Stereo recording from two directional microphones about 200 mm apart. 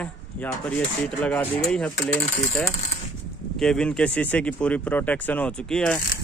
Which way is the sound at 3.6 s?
5° left (ahead or behind).